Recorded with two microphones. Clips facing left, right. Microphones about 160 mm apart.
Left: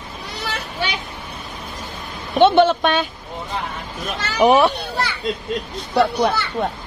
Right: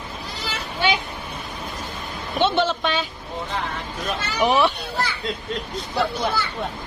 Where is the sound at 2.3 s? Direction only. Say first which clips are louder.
Left 8 dB; 55° left (ahead or behind).